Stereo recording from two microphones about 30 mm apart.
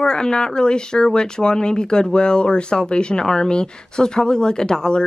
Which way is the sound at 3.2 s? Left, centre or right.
Left.